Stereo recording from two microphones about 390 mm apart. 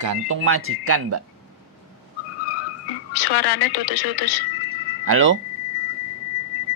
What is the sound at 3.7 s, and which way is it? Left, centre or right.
Speech, left.